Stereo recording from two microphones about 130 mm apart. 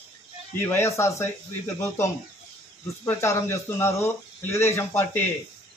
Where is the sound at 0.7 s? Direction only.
20° left (ahead or behind).